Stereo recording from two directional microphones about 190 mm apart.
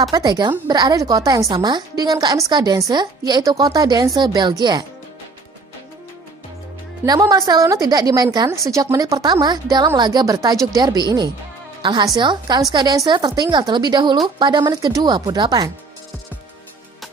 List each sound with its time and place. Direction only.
0.0 s a woman's voice: 20° right (ahead or behind)
7.1 s a woman's voice: 20° right (ahead or behind)